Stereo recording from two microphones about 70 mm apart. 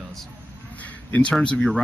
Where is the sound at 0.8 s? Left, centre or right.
Centre.